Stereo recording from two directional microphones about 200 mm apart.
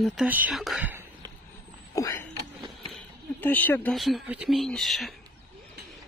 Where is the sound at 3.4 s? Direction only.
10° left (ahead or behind).